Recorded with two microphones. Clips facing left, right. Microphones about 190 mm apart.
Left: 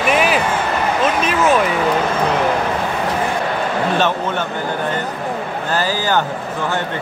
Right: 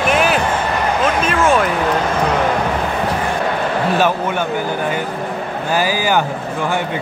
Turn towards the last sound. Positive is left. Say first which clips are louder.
# right 2 dB
turn(degrees=-10)  # may be behind; listen again after turning